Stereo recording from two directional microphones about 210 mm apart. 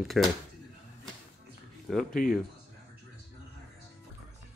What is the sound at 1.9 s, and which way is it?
Speech, centre (ahead or behind).